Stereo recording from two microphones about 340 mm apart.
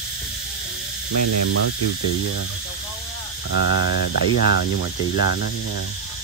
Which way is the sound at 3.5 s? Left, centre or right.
Left.